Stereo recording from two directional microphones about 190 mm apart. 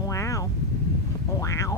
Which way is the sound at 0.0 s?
15° left (ahead or behind).